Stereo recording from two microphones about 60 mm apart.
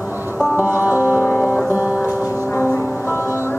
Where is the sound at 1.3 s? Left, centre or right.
Left.